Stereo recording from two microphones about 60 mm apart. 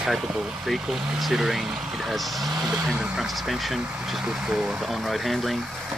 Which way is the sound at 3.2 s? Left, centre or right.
Centre.